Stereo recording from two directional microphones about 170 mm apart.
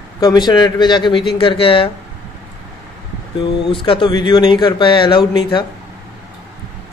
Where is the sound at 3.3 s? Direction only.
30° left (ahead or behind).